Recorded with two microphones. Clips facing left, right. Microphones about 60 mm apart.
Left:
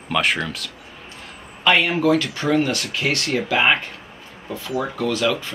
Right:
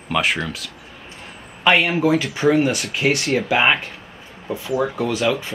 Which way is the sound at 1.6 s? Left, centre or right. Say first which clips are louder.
Right 1 dB; right.